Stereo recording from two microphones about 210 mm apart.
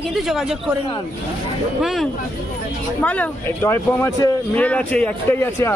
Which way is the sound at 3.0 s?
5° left (ahead or behind).